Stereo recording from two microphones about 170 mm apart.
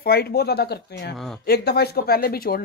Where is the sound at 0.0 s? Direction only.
65° left (ahead or behind).